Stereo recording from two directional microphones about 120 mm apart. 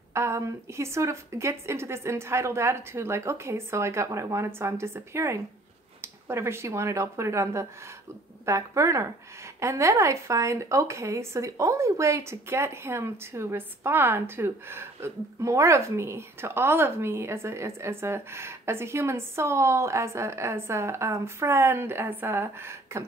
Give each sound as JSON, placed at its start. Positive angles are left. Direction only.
{"t": 0.1, "sound": "a woman's voice", "side_deg": -25}